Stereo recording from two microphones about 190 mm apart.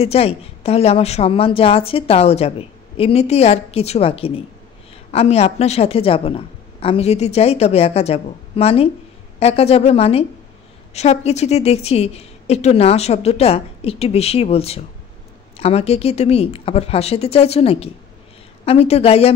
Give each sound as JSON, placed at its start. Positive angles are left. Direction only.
{"t": 0.0, "sound": "a woman's voice", "side_deg": 30}